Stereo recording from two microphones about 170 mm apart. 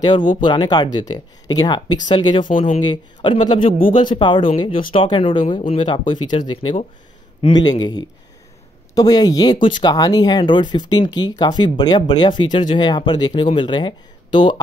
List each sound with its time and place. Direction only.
0.3 s speech: 25° left (ahead or behind)
8.9 s speech: 20° left (ahead or behind)